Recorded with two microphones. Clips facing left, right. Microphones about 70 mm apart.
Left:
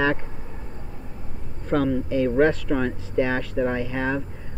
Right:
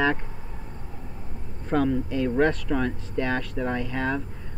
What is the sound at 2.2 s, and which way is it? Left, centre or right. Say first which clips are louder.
Speech: left 4 dB; centre.